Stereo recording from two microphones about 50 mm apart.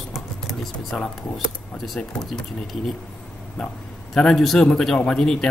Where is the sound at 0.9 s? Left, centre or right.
Centre.